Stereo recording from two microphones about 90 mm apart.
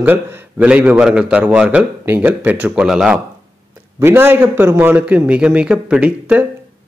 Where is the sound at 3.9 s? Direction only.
25° right (ahead or behind).